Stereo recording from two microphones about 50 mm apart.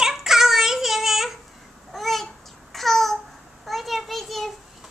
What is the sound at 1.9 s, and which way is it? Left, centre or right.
Babbling, centre.